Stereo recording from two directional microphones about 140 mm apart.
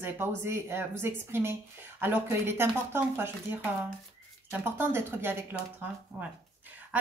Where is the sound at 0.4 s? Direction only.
15° right (ahead or behind).